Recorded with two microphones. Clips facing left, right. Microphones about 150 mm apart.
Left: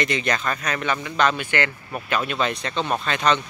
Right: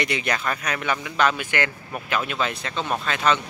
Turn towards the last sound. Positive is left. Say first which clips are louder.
# left 1 dB
turn(degrees=-5)  # may be behind; listen again after turning